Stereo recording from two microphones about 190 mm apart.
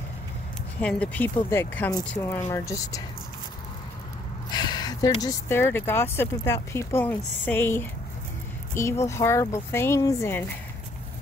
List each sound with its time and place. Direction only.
0.7 s speech: 5° left (ahead or behind)
4.5 s a sound: 20° left (ahead or behind)
5.2 s speech: 10° left (ahead or behind)